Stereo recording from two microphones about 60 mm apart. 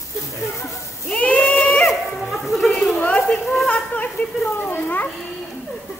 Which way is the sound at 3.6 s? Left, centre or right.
Left.